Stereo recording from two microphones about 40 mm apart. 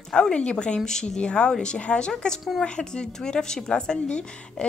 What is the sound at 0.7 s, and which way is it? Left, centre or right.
Speech, centre.